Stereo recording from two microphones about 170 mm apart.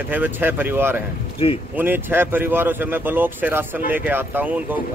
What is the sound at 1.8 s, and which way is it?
Speech, 10° right (ahead or behind).